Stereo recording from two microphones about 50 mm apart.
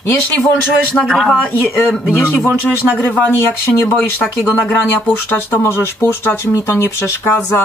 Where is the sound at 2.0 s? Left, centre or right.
Left.